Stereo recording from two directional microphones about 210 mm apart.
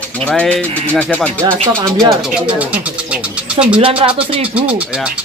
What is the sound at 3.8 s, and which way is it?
Speech, 25° right (ahead or behind).